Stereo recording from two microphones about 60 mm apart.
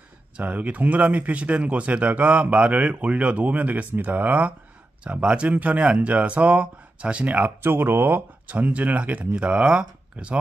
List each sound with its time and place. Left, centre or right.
0.4 s speech: right
7.6 s speech: right; by 10.4 s centre